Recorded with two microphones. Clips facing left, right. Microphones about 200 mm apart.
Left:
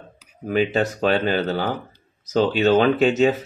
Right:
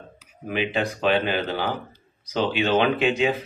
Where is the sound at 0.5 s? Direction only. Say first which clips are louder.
Left 5 dB; 40° left (ahead or behind).